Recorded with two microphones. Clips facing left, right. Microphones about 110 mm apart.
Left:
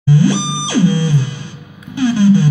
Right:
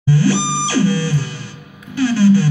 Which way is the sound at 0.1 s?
20° left (ahead or behind).